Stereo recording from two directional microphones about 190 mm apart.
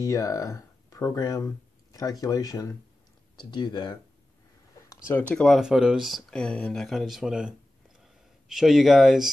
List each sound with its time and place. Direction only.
0.0 s speech: 15° left (ahead or behind)
4.8 s speech: 15° left (ahead or behind); by 7.5 s 5° right (ahead or behind)
8.0 s a sound: centre (ahead or behind)